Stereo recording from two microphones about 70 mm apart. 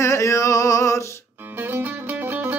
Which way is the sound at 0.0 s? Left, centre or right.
Left.